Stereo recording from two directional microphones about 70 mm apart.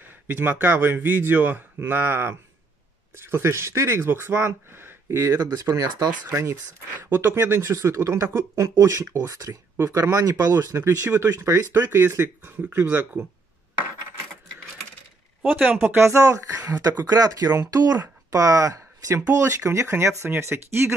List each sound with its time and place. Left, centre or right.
0.0 s speech: right
5.3 s speech: right
7.7 s speech: right
11.7 s speech: right
15.4 s speech: right
17.0 s speech: right